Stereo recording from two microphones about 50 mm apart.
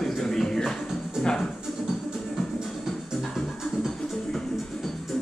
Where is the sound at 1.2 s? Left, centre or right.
Centre.